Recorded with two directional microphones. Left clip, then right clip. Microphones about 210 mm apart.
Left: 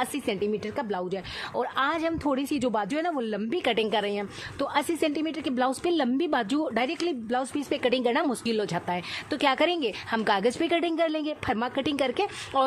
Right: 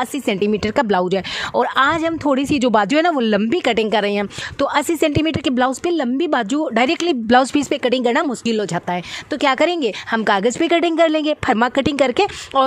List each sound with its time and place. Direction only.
0.0 s speech: 30° right (ahead or behind)